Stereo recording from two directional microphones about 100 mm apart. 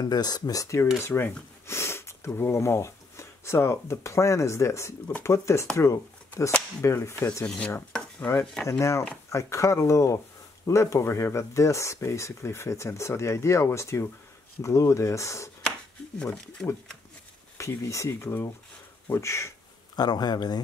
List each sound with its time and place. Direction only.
0.0 s speech: 45° left (ahead or behind)
7.4 s speech: 15° left (ahead or behind)
8.6 s speech: 30° left (ahead or behind)
16.2 s speech: 10° left (ahead or behind)
17.6 s speech: 30° left (ahead or behind)
20.0 s a man's voice: 45° left (ahead or behind)